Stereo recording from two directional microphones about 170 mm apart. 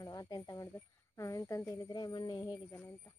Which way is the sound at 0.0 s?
25° left (ahead or behind).